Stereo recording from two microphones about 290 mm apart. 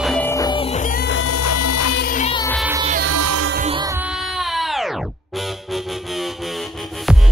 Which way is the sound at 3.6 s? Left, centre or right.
Centre.